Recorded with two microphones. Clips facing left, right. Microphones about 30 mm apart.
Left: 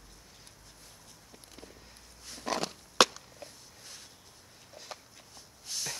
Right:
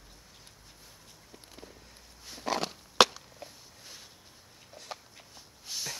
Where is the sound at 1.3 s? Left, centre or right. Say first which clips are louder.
Right 1 dB; centre.